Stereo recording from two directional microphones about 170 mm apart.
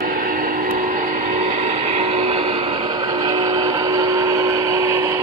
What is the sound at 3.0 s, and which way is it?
Vehicle, 20° right (ahead or behind).